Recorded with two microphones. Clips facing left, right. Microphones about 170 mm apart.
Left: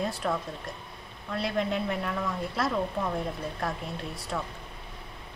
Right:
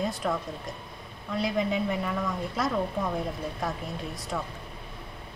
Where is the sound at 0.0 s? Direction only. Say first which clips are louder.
Right 1 dB; centre (ahead or behind).